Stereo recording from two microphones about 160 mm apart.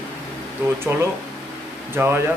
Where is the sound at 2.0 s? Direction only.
15° right (ahead or behind).